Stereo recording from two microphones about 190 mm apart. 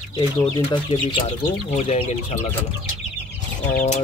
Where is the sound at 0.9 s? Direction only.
40° left (ahead or behind).